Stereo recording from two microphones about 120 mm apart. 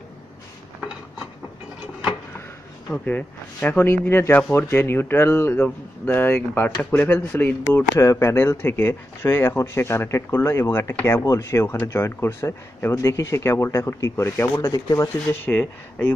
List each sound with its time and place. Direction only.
2.9 s speech: 10° left (ahead or behind)